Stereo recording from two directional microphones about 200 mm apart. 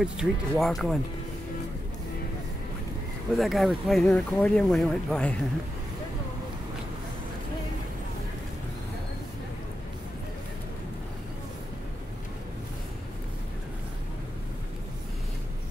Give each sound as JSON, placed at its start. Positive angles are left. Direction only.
{"t": 0.0, "sound": "speech", "side_deg": 0}
{"t": 3.3, "sound": "speech", "side_deg": 0}